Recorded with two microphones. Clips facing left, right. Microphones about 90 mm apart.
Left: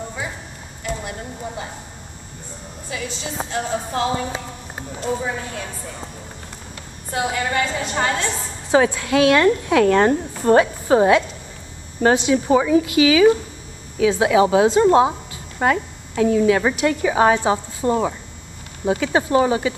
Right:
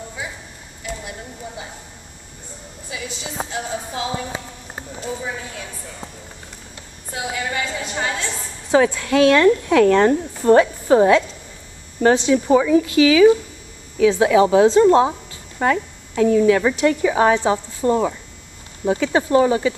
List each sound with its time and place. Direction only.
2.9 s a woman's voice: 10° right (ahead or behind)
3.5 s speech: 55° left (ahead or behind)
5.0 s speech: 40° left (ahead or behind)
5.4 s a woman's voice: 55° left (ahead or behind)
7.1 s a woman's voice: 55° left (ahead or behind)
8.3 s a woman's voice: 20° left (ahead or behind)